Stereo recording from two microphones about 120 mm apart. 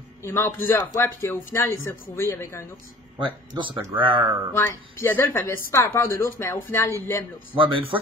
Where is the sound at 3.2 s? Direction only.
40° right (ahead or behind).